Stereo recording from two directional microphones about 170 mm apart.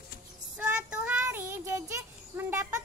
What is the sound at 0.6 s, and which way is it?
Child singing, 5° right (ahead or behind).